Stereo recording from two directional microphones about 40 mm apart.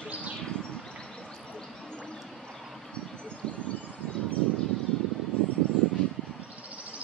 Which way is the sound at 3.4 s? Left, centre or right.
Left.